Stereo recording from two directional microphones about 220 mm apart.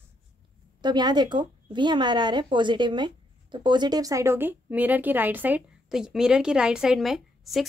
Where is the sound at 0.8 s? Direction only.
20° right (ahead or behind).